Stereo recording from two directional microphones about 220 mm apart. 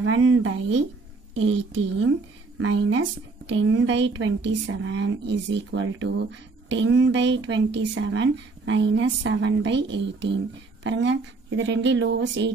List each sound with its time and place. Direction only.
0.0 s speech: 70° right (ahead or behind)